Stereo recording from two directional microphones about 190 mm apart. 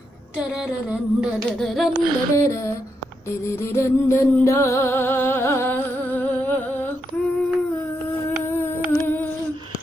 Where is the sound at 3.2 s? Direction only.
15° left (ahead or behind).